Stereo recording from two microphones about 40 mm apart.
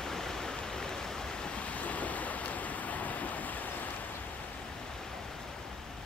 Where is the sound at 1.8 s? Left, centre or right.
Left.